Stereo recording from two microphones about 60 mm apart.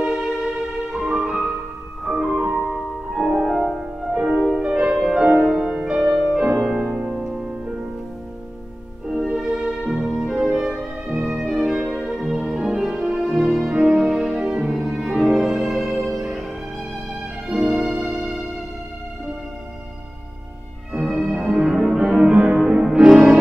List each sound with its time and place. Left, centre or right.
0.0 s music: centre
4.1 s music: right
4.9 s music: centre
9.2 s music: centre
17.5 s music: centre
20.9 s music: centre